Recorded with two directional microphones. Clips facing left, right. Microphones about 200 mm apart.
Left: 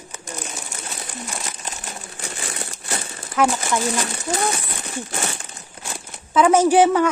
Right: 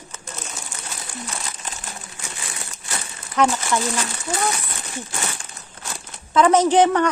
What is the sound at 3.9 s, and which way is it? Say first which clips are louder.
Speech: left 2 dB; 25° left (ahead or behind).